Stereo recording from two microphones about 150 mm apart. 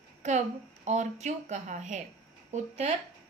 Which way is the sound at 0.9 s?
50° right (ahead or behind).